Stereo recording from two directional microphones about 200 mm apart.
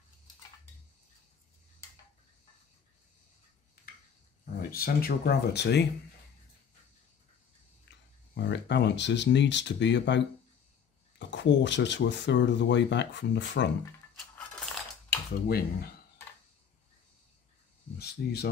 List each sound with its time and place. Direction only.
4.6 s speech: 45° left (ahead or behind)
7.9 s a sound: 65° left (ahead or behind)
8.4 s speech: 60° left (ahead or behind)
14.1 s a sound: 5° left (ahead or behind)
15.4 s speech: 50° left (ahead or behind)
17.9 s speech: 55° left (ahead or behind)